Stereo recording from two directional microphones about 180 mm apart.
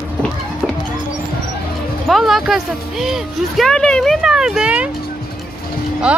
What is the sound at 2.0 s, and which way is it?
Speech, centre (ahead or behind).